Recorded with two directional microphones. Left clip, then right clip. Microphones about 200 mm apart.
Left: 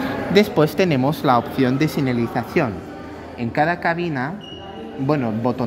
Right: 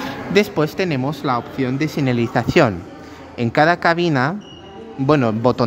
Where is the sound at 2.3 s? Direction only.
25° right (ahead or behind).